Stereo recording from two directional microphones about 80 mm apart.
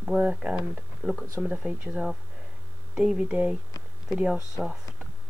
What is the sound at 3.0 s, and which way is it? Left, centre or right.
Speech, centre.